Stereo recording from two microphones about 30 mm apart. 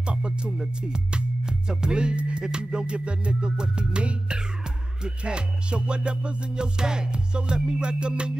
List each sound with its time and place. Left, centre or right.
0.0 s music: right
2.4 s music: right
4.3 s music: right